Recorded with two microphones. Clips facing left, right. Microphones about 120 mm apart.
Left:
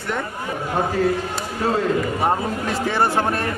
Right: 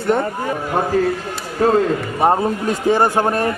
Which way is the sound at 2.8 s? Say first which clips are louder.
Right 5 dB; 15° right (ahead or behind).